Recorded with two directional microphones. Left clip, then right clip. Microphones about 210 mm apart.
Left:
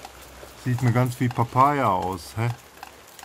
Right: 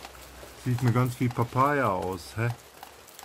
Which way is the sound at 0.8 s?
20° left (ahead or behind).